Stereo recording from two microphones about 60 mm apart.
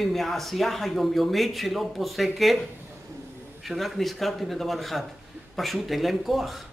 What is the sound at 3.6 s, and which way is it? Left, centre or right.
A man's voice, centre.